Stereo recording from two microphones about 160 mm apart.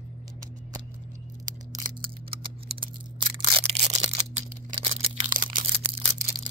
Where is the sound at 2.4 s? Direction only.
30° right (ahead or behind).